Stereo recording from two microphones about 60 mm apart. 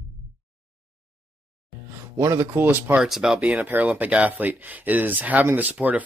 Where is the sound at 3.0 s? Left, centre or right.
Centre.